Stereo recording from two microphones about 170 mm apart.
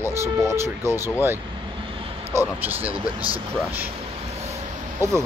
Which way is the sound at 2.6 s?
10° right (ahead or behind).